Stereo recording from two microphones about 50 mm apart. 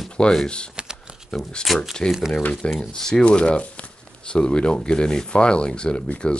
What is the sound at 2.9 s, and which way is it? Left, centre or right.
Speech, centre.